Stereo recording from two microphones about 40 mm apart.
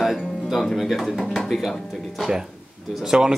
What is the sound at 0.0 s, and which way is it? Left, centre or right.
Music, centre.